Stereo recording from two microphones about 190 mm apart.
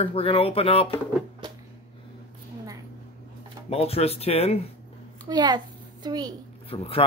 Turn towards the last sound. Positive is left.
turn(degrees=30)  # may be behind; listen again after turning